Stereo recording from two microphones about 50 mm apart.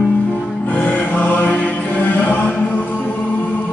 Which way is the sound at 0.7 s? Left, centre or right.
Left.